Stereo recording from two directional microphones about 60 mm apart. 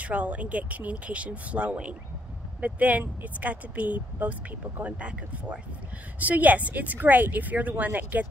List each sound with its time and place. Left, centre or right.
0.0 s speech: right